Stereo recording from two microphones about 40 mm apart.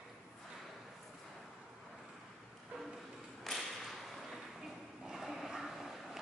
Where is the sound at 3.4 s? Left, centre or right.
Centre.